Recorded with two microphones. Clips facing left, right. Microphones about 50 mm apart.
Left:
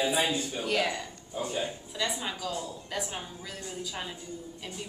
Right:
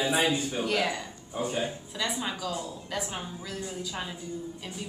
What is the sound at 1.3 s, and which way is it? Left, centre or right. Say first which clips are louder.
Speech: right 2 dB; right.